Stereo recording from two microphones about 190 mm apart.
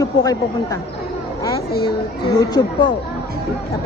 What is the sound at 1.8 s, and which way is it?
A woman's voice, 25° left (ahead or behind).